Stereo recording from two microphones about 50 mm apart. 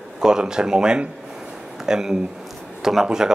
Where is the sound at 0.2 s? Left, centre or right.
Centre.